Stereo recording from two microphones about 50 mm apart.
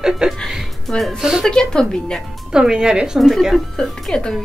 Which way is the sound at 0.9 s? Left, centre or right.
Centre.